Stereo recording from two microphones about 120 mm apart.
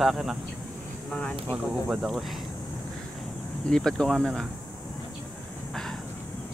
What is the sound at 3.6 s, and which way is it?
Speech, 5° left (ahead or behind).